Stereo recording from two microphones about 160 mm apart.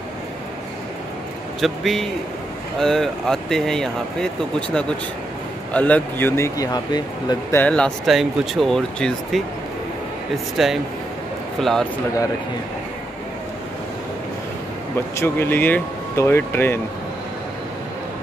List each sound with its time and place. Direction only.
1.6 s speech: centre (ahead or behind)
5.7 s speech: 10° left (ahead or behind); by 7.3 s 25° left (ahead or behind)
7.5 s speech: 10° left (ahead or behind)
15.1 s speech: 15° left (ahead or behind)